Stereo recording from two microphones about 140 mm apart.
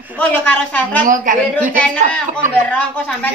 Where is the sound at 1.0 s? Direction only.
70° right (ahead or behind).